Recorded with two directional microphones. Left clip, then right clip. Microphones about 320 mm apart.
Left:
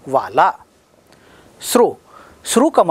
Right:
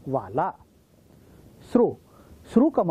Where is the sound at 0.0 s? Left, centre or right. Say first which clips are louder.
Left 12 dB; centre.